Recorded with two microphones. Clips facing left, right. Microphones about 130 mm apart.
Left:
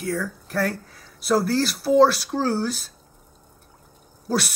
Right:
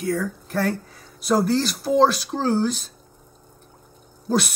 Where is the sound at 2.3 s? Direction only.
20° right (ahead or behind).